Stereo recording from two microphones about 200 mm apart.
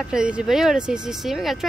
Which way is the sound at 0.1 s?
5° right (ahead or behind).